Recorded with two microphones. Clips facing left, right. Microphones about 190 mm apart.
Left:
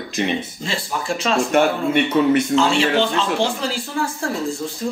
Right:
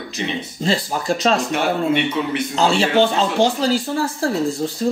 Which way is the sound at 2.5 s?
35° right (ahead or behind).